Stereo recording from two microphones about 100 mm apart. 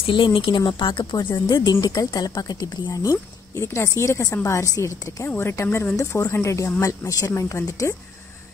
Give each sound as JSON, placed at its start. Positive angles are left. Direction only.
{"t": 0.0, "sound": "speech", "side_deg": 60}
{"t": 1.5, "sound": "a woman's voice", "side_deg": 45}